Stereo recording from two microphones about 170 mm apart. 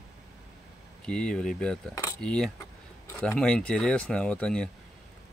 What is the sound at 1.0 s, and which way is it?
Speech, 5° left (ahead or behind).